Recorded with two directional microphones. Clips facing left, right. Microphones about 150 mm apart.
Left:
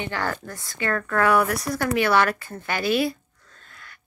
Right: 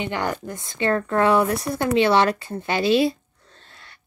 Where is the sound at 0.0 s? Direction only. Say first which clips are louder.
Right 3 dB; 20° right (ahead or behind).